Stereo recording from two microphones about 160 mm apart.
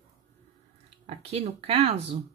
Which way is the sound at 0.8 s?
40° right (ahead or behind).